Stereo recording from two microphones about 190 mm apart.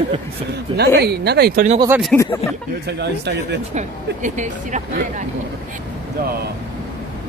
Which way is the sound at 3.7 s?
40° right (ahead or behind).